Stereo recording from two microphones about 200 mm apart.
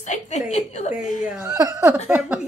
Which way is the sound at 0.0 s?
35° left (ahead or behind).